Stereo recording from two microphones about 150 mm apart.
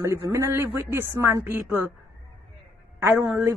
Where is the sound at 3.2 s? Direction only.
15° right (ahead or behind).